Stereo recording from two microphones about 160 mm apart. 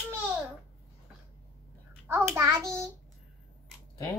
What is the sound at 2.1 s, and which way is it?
Speech, 15° right (ahead or behind).